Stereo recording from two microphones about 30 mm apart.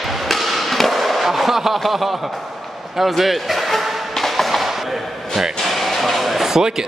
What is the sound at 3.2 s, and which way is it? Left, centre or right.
Music, centre.